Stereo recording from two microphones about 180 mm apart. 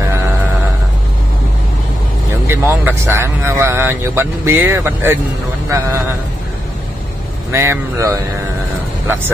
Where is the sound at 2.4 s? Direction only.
15° right (ahead or behind).